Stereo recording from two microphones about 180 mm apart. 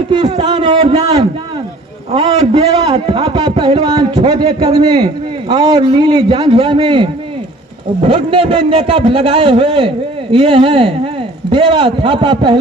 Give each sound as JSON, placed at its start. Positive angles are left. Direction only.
{"t": 0.1, "sound": "a man's voice", "side_deg": -25}